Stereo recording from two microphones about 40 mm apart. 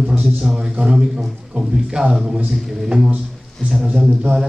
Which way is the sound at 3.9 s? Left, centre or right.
Centre.